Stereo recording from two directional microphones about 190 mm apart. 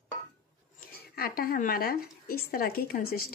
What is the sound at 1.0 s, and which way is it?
Speech, 50° left (ahead or behind).